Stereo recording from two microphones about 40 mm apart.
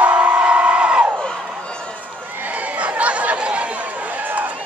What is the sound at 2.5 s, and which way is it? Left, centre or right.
Chatter, right.